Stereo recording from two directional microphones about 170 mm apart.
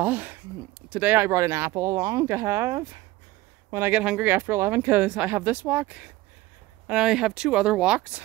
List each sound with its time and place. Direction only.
0.0 s speech: 10° right (ahead or behind)